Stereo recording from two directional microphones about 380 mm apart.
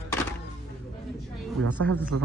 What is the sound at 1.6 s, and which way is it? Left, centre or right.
Speech, right.